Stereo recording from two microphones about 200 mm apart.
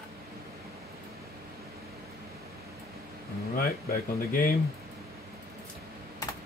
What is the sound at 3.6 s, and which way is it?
Speech, 45° left (ahead or behind).